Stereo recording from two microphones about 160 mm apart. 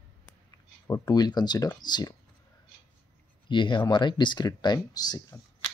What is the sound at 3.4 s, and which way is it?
Speech, 30° left (ahead or behind).